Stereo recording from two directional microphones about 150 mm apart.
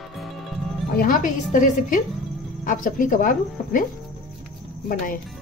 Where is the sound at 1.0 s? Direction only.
65° left (ahead or behind).